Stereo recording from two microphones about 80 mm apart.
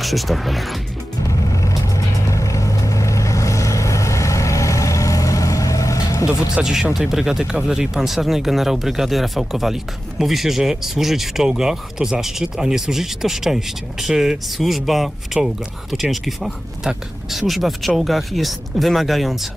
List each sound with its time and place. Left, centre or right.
0.0 s speech: centre
1.5 s vehicle: left
6.5 s speech: centre